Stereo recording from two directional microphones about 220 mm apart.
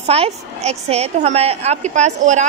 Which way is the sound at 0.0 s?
30° right (ahead or behind).